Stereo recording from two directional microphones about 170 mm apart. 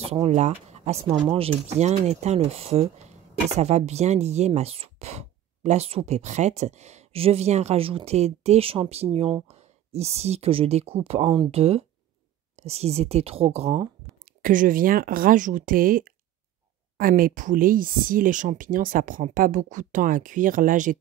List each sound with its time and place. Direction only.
0.0 s speech: 35° right (ahead or behind)
14.4 s speech: 55° right (ahead or behind)